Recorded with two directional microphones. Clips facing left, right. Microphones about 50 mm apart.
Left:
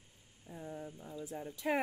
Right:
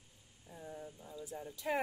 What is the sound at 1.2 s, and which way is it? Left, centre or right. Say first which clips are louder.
Speech: left 3 dB; left.